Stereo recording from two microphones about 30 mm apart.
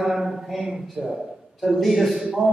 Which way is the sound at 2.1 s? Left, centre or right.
Centre.